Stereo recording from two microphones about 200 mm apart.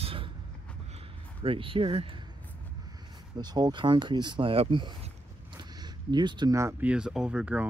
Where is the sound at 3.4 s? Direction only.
20° right (ahead or behind).